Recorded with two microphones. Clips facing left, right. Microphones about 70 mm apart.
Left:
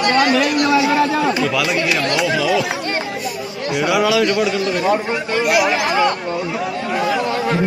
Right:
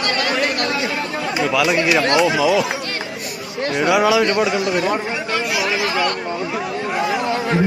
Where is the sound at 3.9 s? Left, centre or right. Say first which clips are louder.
Right 1 dB; centre.